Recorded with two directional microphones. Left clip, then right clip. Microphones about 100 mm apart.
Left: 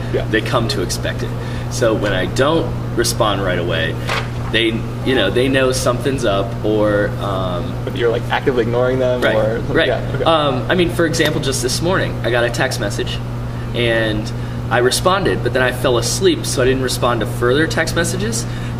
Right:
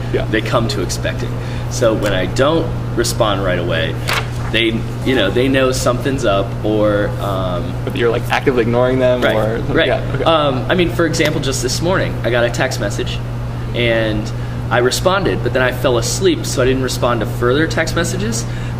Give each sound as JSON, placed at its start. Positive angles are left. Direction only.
{"t": 0.3, "sound": "speech", "side_deg": 0}
{"t": 8.0, "sound": "speech", "side_deg": -30}
{"t": 9.8, "sound": "speech", "side_deg": 0}